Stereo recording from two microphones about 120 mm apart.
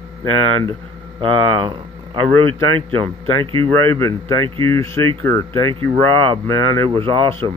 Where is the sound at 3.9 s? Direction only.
20° left (ahead or behind).